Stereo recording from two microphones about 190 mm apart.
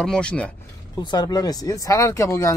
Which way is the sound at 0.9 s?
20° left (ahead or behind).